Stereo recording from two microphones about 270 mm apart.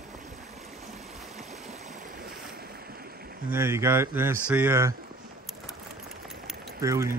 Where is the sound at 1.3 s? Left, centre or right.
Right.